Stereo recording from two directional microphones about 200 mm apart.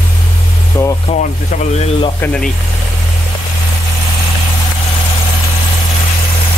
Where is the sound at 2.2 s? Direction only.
5° left (ahead or behind).